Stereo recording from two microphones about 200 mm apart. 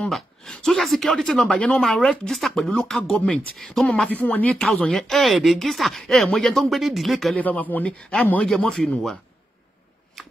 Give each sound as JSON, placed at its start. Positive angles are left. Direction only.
{"t": 0.0, "sound": "speech", "side_deg": 5}